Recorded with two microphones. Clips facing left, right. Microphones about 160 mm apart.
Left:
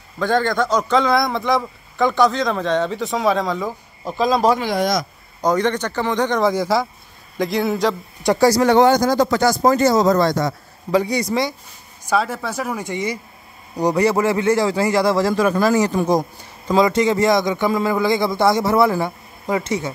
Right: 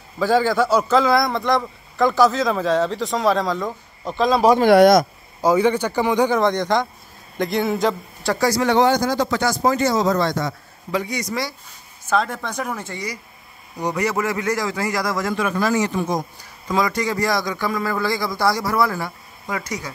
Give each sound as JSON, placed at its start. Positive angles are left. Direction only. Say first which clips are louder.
{"t": 0.2, "sound": "a man's voice", "louder": "right 1 dB", "side_deg": -5}
{"t": 4.6, "sound": "speech", "louder": "right 8 dB", "side_deg": -60}
{"t": 5.4, "sound": "speech", "louder": "right 2 dB", "side_deg": -10}
{"t": 6.4, "sound": "a man's voice", "louder": "left 1 dB", "side_deg": 5}
{"t": 8.4, "sound": "speech", "louder": "left 4 dB", "side_deg": 40}
{"t": 12.1, "sound": "a man's voice", "louder": "left 1 dB", "side_deg": 5}
{"t": 12.8, "sound": "a man's voice", "louder": "left 6 dB", "side_deg": 20}
{"t": 13.7, "sound": "a man's voice", "louder": "left 5 dB", "side_deg": 35}